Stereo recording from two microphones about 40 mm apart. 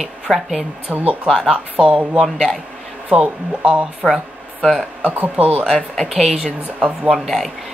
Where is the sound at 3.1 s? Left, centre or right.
Right.